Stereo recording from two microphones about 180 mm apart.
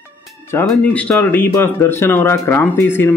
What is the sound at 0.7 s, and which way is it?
Speech, 10° left (ahead or behind).